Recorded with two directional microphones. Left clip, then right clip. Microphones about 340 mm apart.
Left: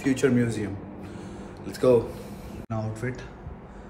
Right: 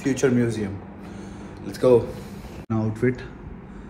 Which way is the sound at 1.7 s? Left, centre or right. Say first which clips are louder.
Right 3 dB; centre.